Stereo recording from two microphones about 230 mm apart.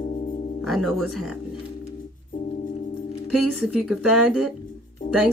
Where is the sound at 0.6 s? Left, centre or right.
Centre.